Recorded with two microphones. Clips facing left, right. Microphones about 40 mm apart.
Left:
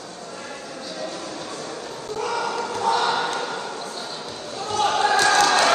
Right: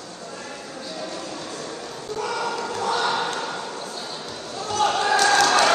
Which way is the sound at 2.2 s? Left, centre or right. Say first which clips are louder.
Left 1 dB; left.